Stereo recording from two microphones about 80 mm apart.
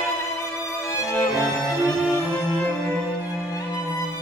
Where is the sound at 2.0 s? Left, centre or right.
Right.